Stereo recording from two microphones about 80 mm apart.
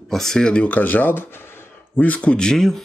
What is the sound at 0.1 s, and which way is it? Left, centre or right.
Speech, centre.